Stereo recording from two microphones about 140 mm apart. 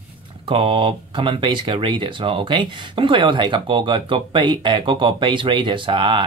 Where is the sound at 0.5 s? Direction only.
40° right (ahead or behind).